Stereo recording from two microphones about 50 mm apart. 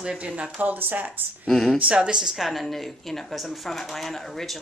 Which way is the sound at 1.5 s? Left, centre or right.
Centre.